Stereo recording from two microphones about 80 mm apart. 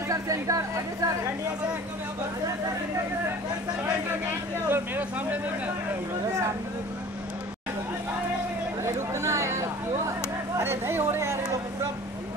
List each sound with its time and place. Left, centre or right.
0.1 s a woman's voice: right
4.6 s speech: right
8.8 s a sound: right
10.6 s speech: right